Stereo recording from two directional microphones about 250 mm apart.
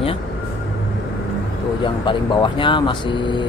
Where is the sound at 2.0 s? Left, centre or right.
Centre.